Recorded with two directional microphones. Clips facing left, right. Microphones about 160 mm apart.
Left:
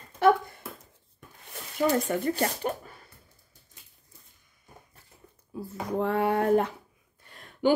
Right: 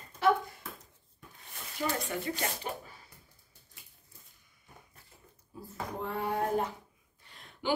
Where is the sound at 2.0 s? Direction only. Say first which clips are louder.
Left 8 dB; 45° left (ahead or behind).